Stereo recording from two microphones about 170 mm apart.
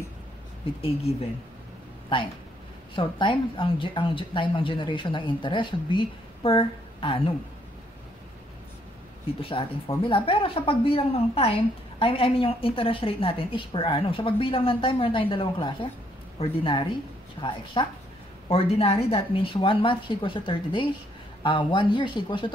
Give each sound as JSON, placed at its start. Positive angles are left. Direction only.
{"t": 0.7, "sound": "a woman's voice", "side_deg": 35}
{"t": 3.0, "sound": "a woman's voice", "side_deg": 30}
{"t": 9.4, "sound": "a woman's voice", "side_deg": 30}